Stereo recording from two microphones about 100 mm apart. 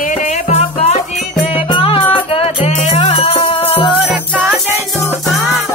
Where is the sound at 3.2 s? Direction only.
55° left (ahead or behind).